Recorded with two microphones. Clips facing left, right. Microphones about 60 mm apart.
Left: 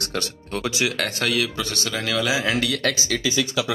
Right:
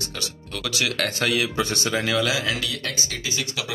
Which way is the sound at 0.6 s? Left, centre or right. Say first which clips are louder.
Left 3 dB; left.